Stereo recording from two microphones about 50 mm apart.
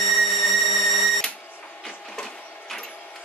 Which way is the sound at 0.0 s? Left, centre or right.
Centre.